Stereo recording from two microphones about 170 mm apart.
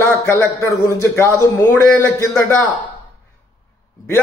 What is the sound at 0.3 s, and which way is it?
A man's voice, 15° left (ahead or behind).